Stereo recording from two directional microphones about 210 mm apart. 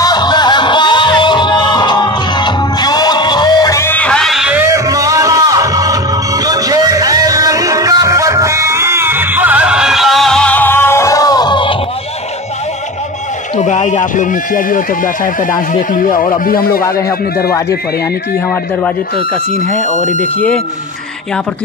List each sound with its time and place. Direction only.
0.0 s music: 20° left (ahead or behind)
13.6 s speech: 35° left (ahead or behind)
16.2 s speech: 40° left (ahead or behind)
19.8 s speech: 35° left (ahead or behind)
20.3 s speech: 5° left (ahead or behind)